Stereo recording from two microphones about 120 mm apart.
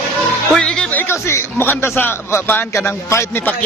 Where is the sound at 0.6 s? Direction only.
5° left (ahead or behind).